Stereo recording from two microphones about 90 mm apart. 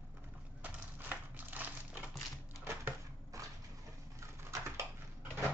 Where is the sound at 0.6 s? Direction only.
20° right (ahead or behind).